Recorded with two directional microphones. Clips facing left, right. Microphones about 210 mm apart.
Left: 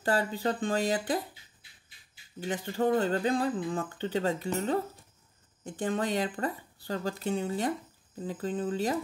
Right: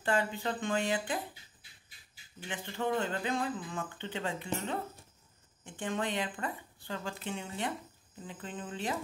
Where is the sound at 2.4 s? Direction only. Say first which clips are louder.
Left 7 dB; 40° left (ahead or behind).